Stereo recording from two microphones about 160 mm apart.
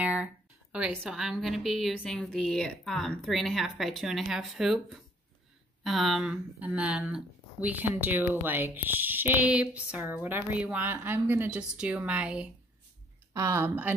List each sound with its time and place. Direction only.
0.0 s a woman's voice: 10° right (ahead or behind)
13.3 s speech: 20° right (ahead or behind)